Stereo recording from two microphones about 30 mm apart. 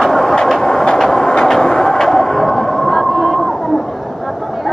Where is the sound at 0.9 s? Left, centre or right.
Centre.